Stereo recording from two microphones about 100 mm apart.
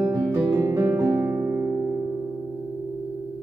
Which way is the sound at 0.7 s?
25° right (ahead or behind).